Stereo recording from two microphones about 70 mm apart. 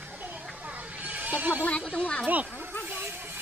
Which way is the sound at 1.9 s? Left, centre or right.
Centre.